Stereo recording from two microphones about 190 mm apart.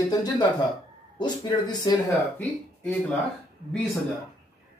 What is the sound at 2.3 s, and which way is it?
Speech, 10° left (ahead or behind).